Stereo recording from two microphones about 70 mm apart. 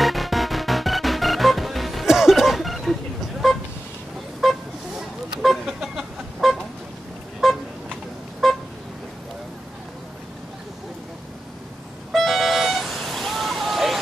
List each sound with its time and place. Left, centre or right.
0.0 s music: centre
4.4 s vehicle: centre
5.4 s chicken: centre
7.4 s vehicle: centre
12.1 s vehicle: centre